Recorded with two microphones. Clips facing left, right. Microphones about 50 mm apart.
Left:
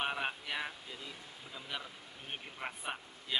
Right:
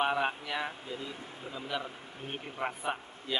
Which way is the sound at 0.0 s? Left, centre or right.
Centre.